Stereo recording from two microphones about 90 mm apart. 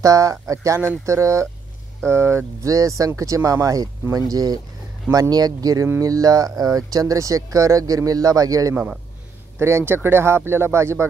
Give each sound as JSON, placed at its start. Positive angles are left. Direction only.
{"t": 0.0, "sound": "speech", "side_deg": -40}
{"t": 9.6, "sound": "speech", "side_deg": -30}